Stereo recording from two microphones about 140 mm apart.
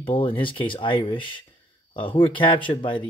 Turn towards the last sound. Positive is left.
turn(degrees=35)  # may be behind; listen again after turning